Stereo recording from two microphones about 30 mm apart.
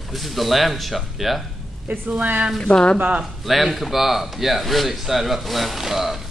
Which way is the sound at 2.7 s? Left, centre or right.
Left.